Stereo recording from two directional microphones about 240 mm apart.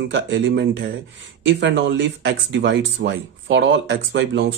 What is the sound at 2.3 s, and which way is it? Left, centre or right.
A man's voice, right.